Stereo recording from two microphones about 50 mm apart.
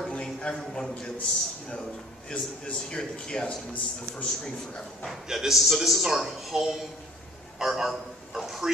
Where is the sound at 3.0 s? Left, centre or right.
Centre.